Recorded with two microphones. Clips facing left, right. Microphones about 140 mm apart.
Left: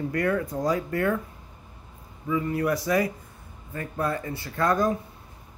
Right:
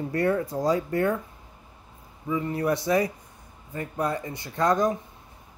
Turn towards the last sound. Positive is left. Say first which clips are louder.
# right 1 dB
turn(degrees=-20)  # may be behind; listen again after turning